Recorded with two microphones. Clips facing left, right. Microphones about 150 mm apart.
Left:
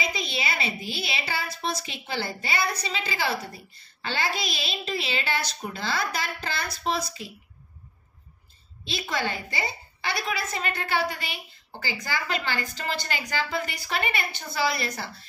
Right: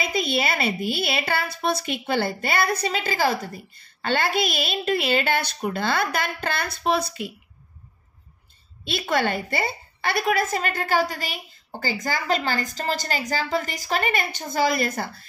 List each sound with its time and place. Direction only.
0.0 s a woman's voice: 55° right (ahead or behind)
8.8 s a woman's voice: 60° right (ahead or behind)